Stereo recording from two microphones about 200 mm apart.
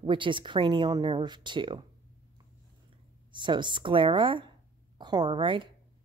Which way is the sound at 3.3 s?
25° right (ahead or behind).